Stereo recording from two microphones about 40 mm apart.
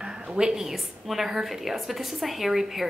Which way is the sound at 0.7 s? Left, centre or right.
Centre.